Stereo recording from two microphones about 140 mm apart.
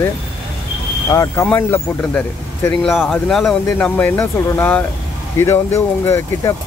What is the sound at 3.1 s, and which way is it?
Speech, centre (ahead or behind).